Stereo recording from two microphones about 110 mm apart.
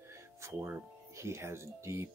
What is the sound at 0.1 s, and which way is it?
Speech, 25° right (ahead or behind).